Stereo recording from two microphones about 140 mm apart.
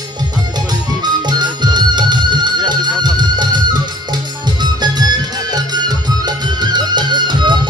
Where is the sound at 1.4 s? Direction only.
30° right (ahead or behind).